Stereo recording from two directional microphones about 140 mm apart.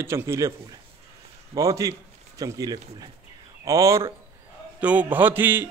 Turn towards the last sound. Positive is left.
turn(degrees=-15)  # may be behind; listen again after turning